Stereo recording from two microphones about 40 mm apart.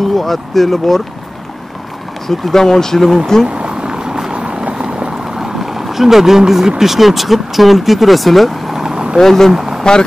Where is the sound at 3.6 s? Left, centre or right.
Right.